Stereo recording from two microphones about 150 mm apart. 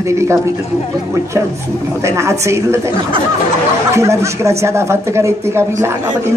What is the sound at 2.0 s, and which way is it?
Speech, 20° right (ahead or behind).